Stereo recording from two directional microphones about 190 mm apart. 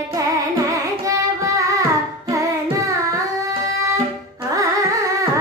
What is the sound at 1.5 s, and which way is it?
Carnatic music, 15° right (ahead or behind).